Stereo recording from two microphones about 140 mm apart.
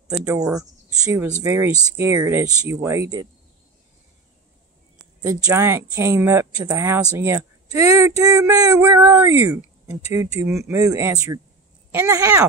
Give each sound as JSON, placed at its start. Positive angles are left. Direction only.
{"t": 0.6, "sound": "speech", "side_deg": -20}
{"t": 5.2, "sound": "speech", "side_deg": -25}
{"t": 5.5, "sound": "speech", "side_deg": -15}